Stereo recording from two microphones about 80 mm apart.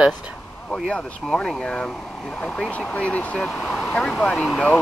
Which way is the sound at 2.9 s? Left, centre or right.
Centre.